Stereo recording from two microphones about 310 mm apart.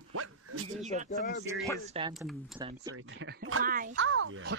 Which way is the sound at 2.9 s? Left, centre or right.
Right.